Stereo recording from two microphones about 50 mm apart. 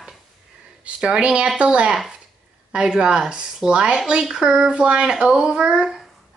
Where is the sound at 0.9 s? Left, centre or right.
Centre.